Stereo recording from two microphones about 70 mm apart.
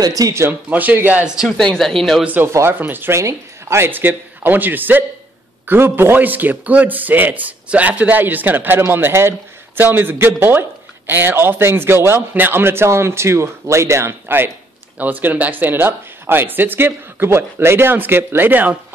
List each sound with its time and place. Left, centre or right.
0.0 s speech: right
0.3 s a man's voice: right
0.7 s speech: right
1.6 s speech: centre
2.2 s speech: right
3.2 s a man's voice: right
15.0 s speech: right